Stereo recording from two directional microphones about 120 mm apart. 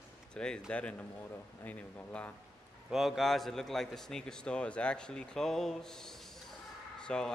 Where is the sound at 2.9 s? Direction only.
Centre (ahead or behind).